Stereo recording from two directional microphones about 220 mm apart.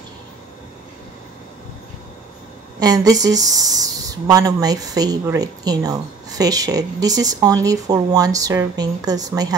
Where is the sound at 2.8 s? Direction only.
15° right (ahead or behind).